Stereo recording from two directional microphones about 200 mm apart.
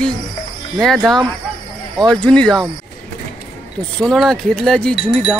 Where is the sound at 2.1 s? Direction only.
5° left (ahead or behind).